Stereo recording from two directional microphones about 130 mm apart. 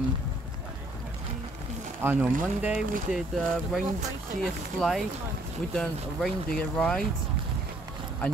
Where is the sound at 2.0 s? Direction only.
15° right (ahead or behind).